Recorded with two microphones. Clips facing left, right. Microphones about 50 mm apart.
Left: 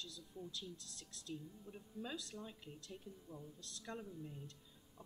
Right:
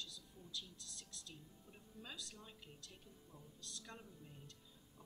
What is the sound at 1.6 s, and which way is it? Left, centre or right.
Speech, centre.